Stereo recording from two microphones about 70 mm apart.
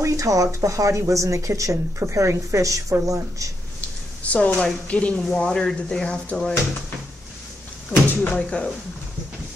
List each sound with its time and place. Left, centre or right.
0.0 s speech: right
4.2 s speech: left
7.9 s speech: left